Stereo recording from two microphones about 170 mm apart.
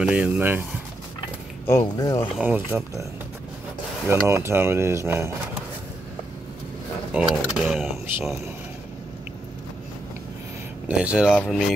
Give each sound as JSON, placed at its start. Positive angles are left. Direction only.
{"t": 0.0, "sound": "mechanisms", "side_deg": -5}
{"t": 1.7, "sound": "speech", "side_deg": 20}
{"t": 2.4, "sound": "mechanisms", "side_deg": -10}
{"t": 4.1, "sound": "mechanisms", "side_deg": -15}
{"t": 7.2, "sound": "speech", "side_deg": -5}
{"t": 10.9, "sound": "mechanisms", "side_deg": -5}
{"t": 11.3, "sound": "speech", "side_deg": 0}